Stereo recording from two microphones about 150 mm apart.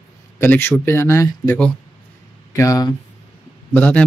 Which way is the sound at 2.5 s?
25° left (ahead or behind).